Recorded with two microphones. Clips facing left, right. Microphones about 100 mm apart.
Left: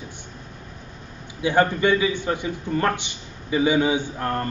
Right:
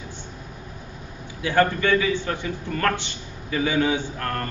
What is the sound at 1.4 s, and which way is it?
A man's voice, 15° left (ahead or behind).